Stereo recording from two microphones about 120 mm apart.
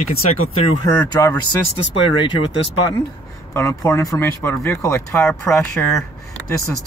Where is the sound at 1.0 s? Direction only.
30° left (ahead or behind).